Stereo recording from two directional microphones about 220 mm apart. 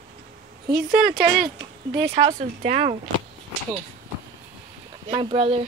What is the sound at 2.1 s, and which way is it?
Speech, 30° right (ahead or behind).